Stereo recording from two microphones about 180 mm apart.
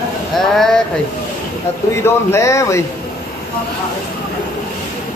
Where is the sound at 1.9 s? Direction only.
15° left (ahead or behind).